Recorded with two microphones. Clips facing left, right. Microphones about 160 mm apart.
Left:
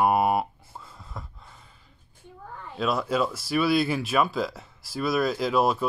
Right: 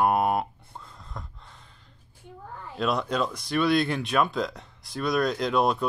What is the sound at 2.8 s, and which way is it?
Speech, centre (ahead or behind).